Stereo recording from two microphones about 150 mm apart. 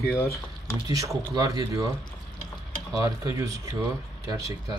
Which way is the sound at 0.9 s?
20° right (ahead or behind).